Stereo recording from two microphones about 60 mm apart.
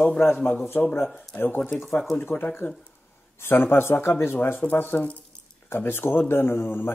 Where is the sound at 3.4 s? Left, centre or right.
Left.